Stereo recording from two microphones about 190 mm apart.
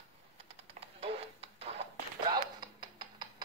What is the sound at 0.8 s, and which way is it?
Music, 30° right (ahead or behind).